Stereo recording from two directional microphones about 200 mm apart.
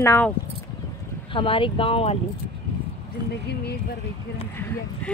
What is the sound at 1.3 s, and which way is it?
Speech, 25° left (ahead or behind).